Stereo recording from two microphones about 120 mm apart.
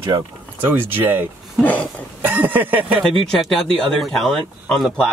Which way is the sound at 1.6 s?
15° left (ahead or behind).